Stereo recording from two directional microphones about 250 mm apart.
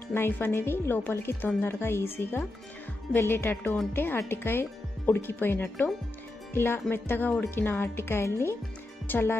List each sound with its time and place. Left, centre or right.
0.1 s speech: centre
3.1 s speech: centre